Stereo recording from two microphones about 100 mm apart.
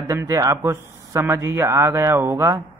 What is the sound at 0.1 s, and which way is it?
Speech, 35° right (ahead or behind).